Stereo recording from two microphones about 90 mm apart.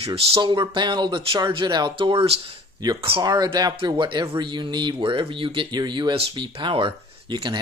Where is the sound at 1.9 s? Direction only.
85° right.